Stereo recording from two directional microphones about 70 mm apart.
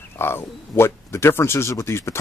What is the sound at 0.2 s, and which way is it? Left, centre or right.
Speech, left.